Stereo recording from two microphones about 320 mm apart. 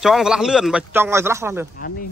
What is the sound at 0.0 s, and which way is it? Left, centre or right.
A man's voice, centre.